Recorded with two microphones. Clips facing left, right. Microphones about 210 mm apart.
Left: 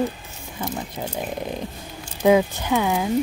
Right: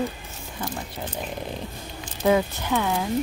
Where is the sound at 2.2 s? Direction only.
15° left (ahead or behind).